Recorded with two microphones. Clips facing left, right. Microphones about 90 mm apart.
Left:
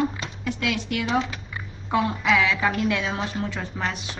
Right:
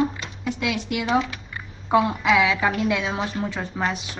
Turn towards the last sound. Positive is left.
turn(degrees=-10)  # may be behind; listen again after turning